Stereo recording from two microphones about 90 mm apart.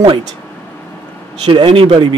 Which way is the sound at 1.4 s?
60° right (ahead or behind).